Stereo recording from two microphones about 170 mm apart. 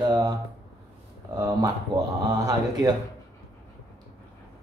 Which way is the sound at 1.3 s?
20° right (ahead or behind).